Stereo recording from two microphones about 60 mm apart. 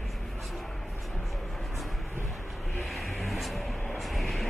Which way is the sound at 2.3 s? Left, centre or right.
Centre.